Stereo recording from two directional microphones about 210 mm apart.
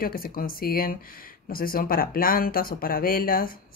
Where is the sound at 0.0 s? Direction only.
45° left (ahead or behind).